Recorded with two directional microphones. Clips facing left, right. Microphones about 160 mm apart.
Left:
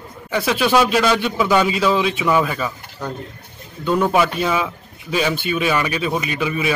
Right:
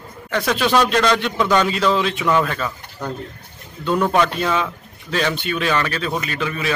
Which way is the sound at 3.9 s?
5° left (ahead or behind).